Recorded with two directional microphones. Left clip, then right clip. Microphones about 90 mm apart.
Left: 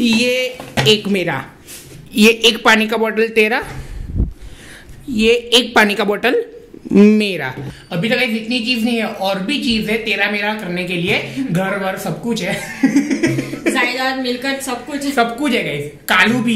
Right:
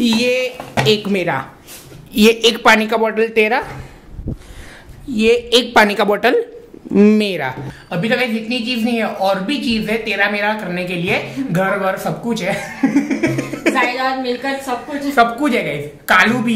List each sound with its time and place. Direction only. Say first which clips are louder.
0.0 s a woman's voice: even; centre (ahead or behind)
5.1 s a woman's voice: even; centre (ahead or behind)
13.4 s speech: right 1 dB; 25° right (ahead or behind)
13.7 s a woman's voice: even; 10° left (ahead or behind)
15.1 s a woman's voice: right 3 dB; centre (ahead or behind)